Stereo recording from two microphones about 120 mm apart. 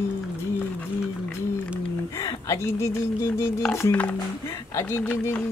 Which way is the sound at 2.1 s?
25° left (ahead or behind).